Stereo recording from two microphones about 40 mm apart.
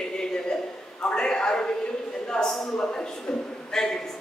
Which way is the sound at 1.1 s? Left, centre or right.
Left.